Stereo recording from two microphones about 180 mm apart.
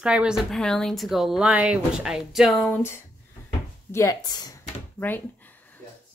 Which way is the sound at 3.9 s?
15° left (ahead or behind).